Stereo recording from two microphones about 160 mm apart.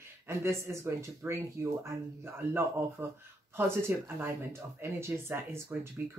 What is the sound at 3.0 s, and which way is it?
Speech, 15° right (ahead or behind).